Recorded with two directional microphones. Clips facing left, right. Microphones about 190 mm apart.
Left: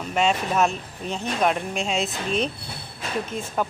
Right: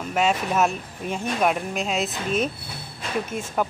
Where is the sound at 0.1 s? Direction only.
5° right (ahead or behind).